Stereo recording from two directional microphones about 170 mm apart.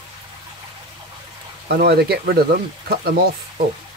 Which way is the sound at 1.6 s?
70° right (ahead or behind).